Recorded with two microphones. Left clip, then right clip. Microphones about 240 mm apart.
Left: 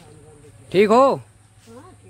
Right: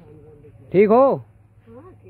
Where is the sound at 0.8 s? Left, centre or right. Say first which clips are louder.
Even; centre.